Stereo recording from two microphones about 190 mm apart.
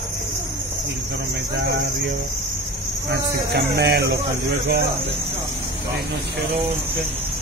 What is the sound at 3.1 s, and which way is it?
Speech, 60° right (ahead or behind).